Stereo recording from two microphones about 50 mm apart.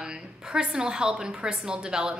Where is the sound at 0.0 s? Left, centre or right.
Centre.